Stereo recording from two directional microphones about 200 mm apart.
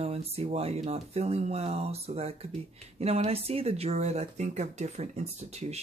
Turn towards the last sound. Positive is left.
turn(degrees=-30)  # may be behind; listen again after turning